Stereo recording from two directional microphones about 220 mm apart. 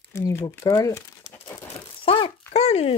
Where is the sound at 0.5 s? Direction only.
10° left (ahead or behind).